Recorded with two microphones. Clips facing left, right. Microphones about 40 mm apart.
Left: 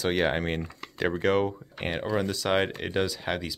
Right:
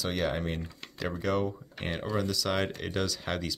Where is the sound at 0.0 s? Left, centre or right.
Left.